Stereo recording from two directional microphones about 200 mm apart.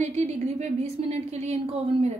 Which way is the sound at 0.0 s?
35° right (ahead or behind).